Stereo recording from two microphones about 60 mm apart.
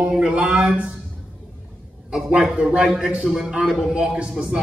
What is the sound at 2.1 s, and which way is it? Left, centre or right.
Speech, centre.